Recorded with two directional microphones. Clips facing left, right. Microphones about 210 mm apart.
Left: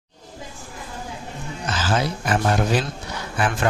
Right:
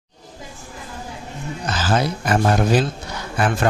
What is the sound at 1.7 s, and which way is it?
Speech, 40° right (ahead or behind).